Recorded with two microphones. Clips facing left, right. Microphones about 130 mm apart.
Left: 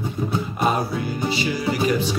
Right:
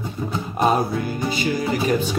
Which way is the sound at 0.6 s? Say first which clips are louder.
Right 4 dB; 45° right (ahead or behind).